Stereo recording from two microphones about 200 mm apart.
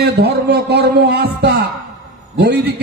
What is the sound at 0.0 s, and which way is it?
A man's voice, 55° right (ahead or behind).